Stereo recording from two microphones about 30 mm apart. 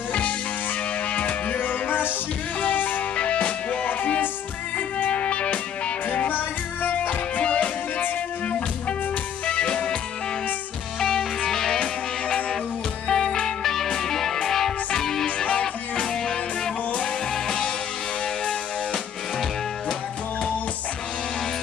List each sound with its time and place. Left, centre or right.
1.5 s music: left
3.2 s music: left
5.1 s music: left
6.2 s music: left
7.3 s music: left
9.6 s music: left
11.0 s music: left
13.1 s music: centre
15.2 s music: left
16.0 s music: left